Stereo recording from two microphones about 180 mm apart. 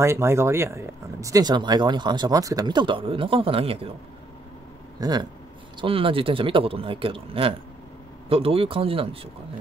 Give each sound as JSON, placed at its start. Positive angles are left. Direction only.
{"t": 0.0, "sound": "speech", "side_deg": -15}
{"t": 5.0, "sound": "speech", "side_deg": -20}